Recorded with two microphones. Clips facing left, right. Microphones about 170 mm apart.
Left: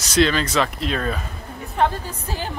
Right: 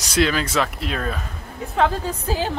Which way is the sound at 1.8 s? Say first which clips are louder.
Right 1 dB; 90° right.